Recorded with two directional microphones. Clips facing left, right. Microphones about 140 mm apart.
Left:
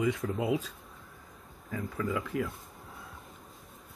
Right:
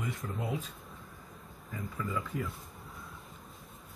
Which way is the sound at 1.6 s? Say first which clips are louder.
Left 5 dB; 90° left.